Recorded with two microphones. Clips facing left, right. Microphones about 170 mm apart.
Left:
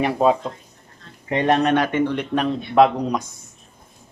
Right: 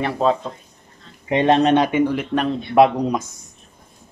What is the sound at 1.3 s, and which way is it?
Speech, 25° right (ahead or behind).